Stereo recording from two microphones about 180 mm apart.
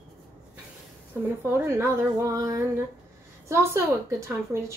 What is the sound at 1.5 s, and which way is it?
A woman's voice, 15° right (ahead or behind).